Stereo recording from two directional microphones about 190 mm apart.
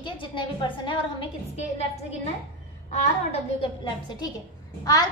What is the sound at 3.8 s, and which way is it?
Speech, 25° left (ahead or behind).